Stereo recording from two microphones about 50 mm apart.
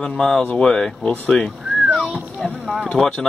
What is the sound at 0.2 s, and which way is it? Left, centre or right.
Speech, centre.